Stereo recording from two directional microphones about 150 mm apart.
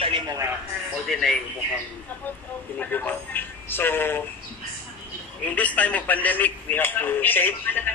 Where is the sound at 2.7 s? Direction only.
10° left (ahead or behind).